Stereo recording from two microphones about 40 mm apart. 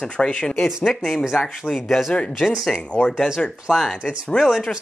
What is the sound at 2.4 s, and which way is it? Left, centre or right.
Speech, left.